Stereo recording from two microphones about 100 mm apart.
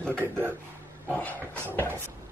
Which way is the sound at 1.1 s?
20° left (ahead or behind).